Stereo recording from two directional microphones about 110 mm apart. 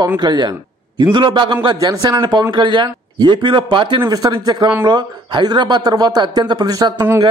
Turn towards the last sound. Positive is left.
turn(degrees=-35)  # may be behind; listen again after turning